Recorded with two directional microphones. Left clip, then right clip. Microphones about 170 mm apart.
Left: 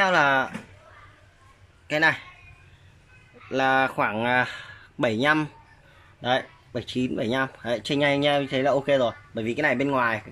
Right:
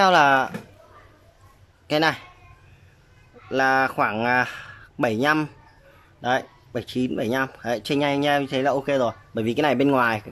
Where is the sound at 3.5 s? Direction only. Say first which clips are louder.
Right 2 dB; 5° right (ahead or behind).